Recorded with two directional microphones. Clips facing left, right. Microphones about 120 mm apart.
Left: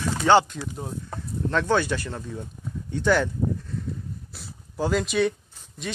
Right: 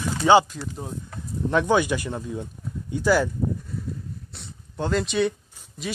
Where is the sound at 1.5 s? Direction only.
15° right (ahead or behind).